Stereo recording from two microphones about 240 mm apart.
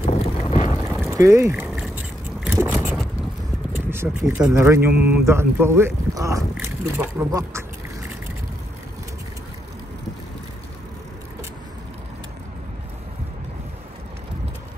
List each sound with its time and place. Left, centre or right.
0.0 s vehicle: left
0.8 s a sound: centre
1.1 s vehicle: centre
3.7 s speech: centre